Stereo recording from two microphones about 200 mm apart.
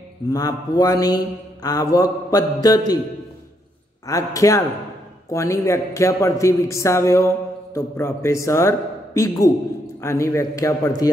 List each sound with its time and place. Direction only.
0.3 s a man's voice: 20° left (ahead or behind)
4.0 s a man's voice: 15° left (ahead or behind)